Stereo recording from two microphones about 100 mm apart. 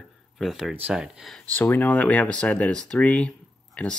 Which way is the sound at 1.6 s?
20° left (ahead or behind).